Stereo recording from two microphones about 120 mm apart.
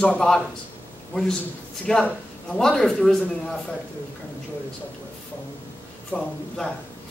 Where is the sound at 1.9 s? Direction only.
5° left (ahead or behind).